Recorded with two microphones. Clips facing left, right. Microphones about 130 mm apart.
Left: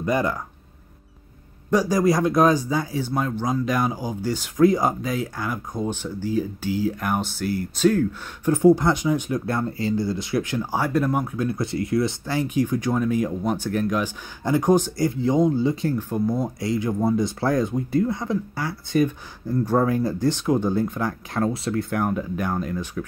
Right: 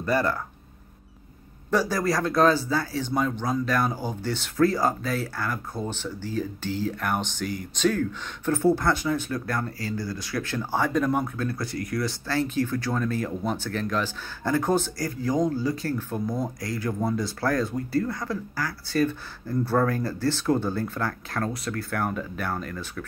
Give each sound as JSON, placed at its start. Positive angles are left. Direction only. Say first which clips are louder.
{"t": 0.0, "sound": "speech", "louder": "left 2 dB", "side_deg": 15}
{"t": 1.7, "sound": "speech", "louder": "left 5 dB", "side_deg": 15}